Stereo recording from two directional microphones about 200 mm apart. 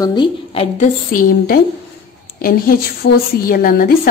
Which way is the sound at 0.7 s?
45° left (ahead or behind).